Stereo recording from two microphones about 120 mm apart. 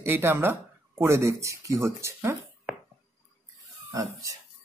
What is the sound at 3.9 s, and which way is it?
Speech, 30° right (ahead or behind).